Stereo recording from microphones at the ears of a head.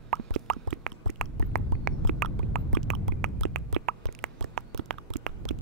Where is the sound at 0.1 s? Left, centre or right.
Right.